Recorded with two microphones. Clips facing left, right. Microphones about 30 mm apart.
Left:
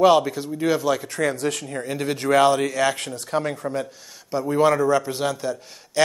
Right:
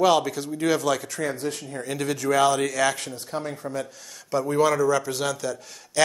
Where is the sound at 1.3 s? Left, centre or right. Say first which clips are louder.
Left 4 dB; left.